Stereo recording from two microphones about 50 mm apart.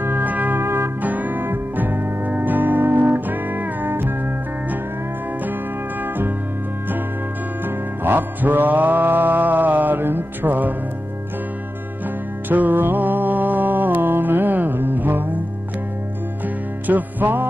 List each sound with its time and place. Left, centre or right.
0.0 s music: right
0.6 s music: right
1.0 s music: right
7.6 s music: right
12.4 s music: right
16.8 s music: right